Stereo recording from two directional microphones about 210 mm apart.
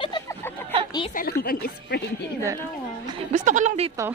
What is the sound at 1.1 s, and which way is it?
A woman's voice, 45° left (ahead or behind).